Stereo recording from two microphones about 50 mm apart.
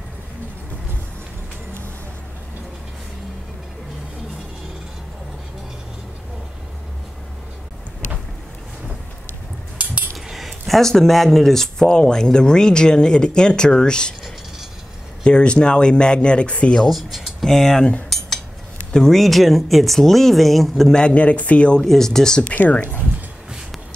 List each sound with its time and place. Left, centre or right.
10.1 s speech: centre
15.2 s speech: centre
16.8 s speech: centre
17.5 s speech: centre
18.9 s speech: centre
20.9 s speech: left
21.8 s speech: centre
22.7 s speech: left